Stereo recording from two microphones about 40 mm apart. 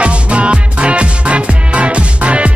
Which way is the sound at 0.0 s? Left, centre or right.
Right.